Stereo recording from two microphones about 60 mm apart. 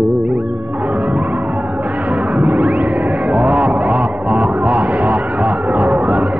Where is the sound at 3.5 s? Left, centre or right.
Right.